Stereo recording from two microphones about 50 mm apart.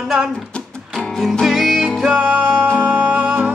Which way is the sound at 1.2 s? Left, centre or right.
Centre.